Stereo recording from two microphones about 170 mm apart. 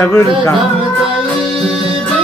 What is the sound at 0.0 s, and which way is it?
Music, 15° left (ahead or behind).